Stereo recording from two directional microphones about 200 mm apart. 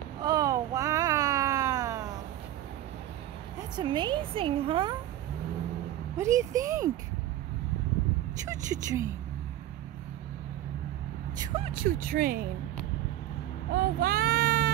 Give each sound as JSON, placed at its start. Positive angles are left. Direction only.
{"t": 0.2, "sound": "a sound", "side_deg": -15}
{"t": 3.7, "sound": "a woman's voice", "side_deg": -20}
{"t": 6.1, "sound": "speech", "side_deg": -15}
{"t": 8.5, "sound": "speech", "side_deg": -15}
{"t": 11.3, "sound": "vehicle", "side_deg": -20}
{"t": 11.7, "sound": "speech", "side_deg": -45}
{"t": 14.0, "sound": "speech", "side_deg": -50}